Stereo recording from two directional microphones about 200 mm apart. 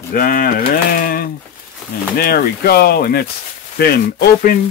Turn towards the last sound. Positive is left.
turn(degrees=50)  # may be behind; listen again after turning